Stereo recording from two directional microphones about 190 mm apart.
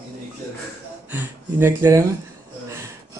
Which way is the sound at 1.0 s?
10° right (ahead or behind).